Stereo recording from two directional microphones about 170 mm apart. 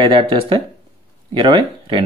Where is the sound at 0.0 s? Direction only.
30° right (ahead or behind).